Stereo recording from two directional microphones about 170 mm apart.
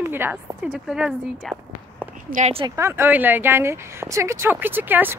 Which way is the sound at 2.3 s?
40° right (ahead or behind).